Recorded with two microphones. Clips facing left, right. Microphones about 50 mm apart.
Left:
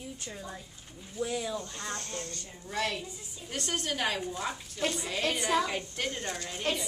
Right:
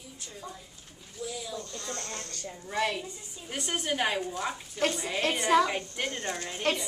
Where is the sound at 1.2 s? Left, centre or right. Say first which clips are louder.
Left 4 dB; left.